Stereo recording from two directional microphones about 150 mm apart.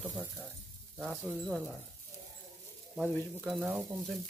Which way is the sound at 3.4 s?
Centre (ahead or behind).